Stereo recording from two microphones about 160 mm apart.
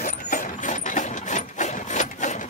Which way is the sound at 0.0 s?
55° left (ahead or behind).